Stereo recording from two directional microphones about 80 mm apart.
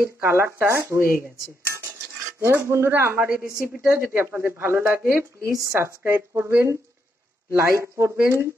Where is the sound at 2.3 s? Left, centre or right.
Right.